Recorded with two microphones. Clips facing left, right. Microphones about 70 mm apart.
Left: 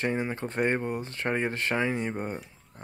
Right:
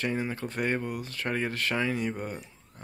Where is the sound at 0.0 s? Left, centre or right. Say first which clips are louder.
Left 2 dB; left.